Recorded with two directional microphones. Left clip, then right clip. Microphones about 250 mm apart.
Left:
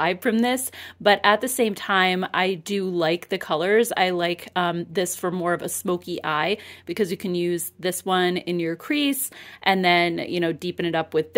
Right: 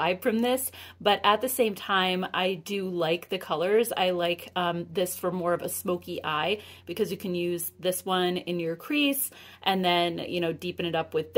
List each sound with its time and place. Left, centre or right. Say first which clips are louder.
0.0 s speech: left 4 dB; left